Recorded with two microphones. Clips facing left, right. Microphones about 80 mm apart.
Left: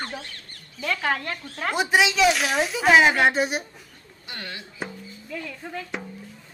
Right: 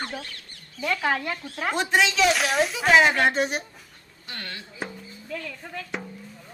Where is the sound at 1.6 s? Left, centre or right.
Centre.